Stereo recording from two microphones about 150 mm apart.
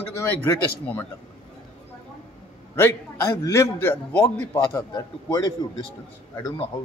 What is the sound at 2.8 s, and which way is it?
A man's voice, 15° left (ahead or behind).